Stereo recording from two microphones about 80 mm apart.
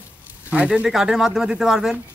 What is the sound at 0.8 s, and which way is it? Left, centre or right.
Speech, centre.